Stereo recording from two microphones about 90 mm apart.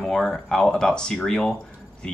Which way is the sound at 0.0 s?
5° left (ahead or behind).